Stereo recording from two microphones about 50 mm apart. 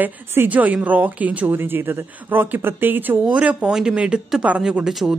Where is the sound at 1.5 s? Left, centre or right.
Right.